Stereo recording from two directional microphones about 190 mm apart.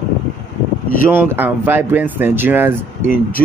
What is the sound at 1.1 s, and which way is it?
A man's voice, 10° right (ahead or behind).